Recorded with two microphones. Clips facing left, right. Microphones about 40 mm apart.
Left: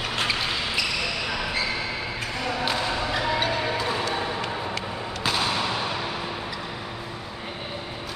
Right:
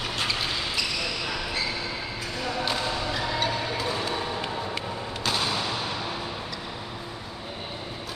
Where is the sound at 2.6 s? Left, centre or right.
Centre.